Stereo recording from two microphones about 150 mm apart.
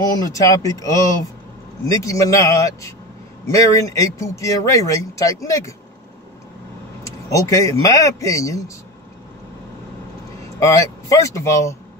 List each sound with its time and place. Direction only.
0.2 s speech: 20° left (ahead or behind)
7.2 s speech: 20° left (ahead or behind)
10.6 s speech: 20° left (ahead or behind)